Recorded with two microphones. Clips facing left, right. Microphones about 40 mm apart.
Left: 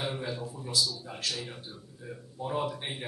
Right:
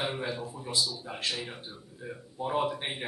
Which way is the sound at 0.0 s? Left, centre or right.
Centre.